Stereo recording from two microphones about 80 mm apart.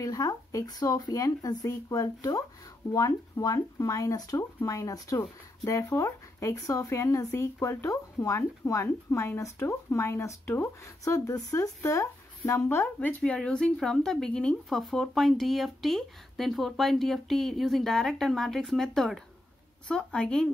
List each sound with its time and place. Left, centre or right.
0.0 s speech: left
11.1 s speech: left
13.2 s speech: centre